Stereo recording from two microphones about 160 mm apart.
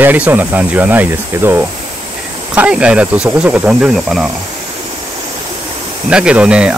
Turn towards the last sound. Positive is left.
turn(degrees=-5)  # may be behind; listen again after turning